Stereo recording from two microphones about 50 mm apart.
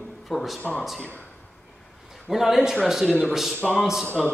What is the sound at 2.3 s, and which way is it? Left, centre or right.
A man's voice, centre.